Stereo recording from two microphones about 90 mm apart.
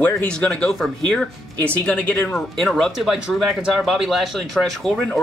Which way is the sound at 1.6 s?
15° left (ahead or behind).